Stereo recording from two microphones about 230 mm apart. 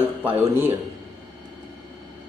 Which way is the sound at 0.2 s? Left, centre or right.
Centre.